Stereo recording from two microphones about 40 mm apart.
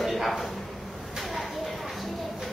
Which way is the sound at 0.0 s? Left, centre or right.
Centre.